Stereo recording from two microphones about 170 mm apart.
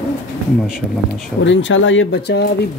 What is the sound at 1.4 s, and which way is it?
Speech, 90° left.